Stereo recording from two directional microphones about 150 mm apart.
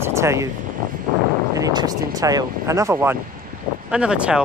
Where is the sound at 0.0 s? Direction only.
20° right (ahead or behind).